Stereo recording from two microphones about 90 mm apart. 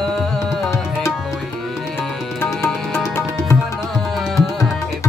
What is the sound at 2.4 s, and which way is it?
Music, 25° left (ahead or behind).